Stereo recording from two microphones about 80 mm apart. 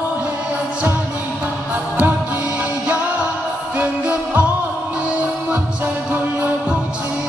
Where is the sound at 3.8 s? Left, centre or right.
Right.